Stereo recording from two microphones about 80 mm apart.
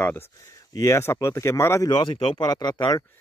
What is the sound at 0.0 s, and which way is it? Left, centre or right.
Speech, left.